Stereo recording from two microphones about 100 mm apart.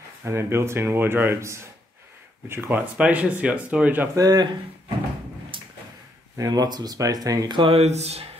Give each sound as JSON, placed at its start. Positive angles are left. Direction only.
{"t": 0.2, "sound": "speech", "side_deg": -25}
{"t": 3.0, "sound": "speech", "side_deg": -15}
{"t": 4.1, "sound": "speech", "side_deg": -40}
{"t": 5.5, "sound": "a sound", "side_deg": -60}
{"t": 6.3, "sound": "speech", "side_deg": -40}
{"t": 7.7, "sound": "speech", "side_deg": -90}